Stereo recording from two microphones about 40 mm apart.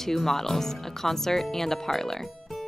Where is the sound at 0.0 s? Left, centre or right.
Centre.